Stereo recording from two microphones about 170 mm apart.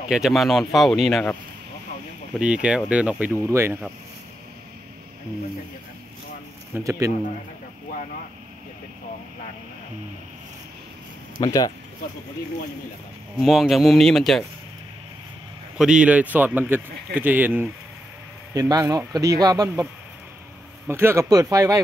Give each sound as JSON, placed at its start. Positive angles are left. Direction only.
{"t": 0.1, "sound": "speech", "side_deg": 0}
{"t": 2.3, "sound": "speech", "side_deg": -5}
{"t": 6.7, "sound": "speech", "side_deg": -15}
{"t": 11.4, "sound": "speech", "side_deg": 20}
{"t": 13.4, "sound": "speech", "side_deg": 0}
{"t": 15.8, "sound": "speech", "side_deg": -5}
{"t": 18.5, "sound": "speech", "side_deg": -20}
{"t": 20.8, "sound": "speech", "side_deg": -15}